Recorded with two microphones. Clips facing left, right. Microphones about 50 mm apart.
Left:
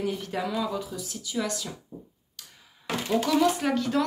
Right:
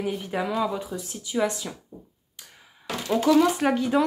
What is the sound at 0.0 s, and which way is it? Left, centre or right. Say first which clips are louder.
Speech: right 2 dB; centre.